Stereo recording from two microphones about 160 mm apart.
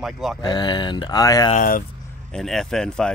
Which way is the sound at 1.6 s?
60° left (ahead or behind).